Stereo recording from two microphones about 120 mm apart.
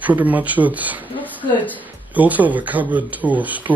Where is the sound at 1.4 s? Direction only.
15° left (ahead or behind).